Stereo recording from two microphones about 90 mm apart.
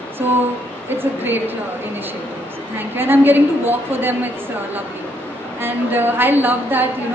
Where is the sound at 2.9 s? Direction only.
25° right (ahead or behind).